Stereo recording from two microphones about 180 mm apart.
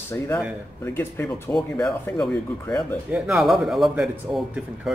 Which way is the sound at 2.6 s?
15° left (ahead or behind).